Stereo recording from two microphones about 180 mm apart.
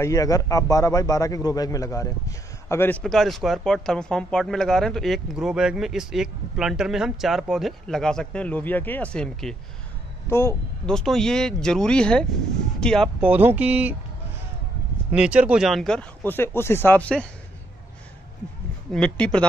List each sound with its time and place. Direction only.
0.0 s a man's voice: 20° left (ahead or behind)
3.0 s speech: centre (ahead or behind)
11.0 s speech: 5° left (ahead or behind)
13.2 s speech: 10° right (ahead or behind)
15.0 s speech: 5° right (ahead or behind)
18.9 s speech: 5° left (ahead or behind)